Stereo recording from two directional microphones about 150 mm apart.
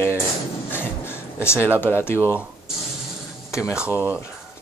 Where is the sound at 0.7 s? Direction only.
15° left (ahead or behind).